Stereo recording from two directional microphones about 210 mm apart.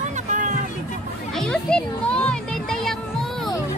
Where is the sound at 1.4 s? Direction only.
5° left (ahead or behind).